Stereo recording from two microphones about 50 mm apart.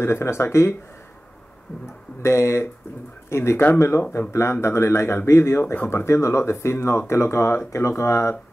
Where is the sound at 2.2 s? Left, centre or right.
Left.